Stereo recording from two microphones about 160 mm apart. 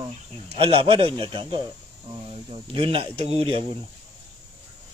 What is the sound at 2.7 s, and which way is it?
Speech, 35° right (ahead or behind).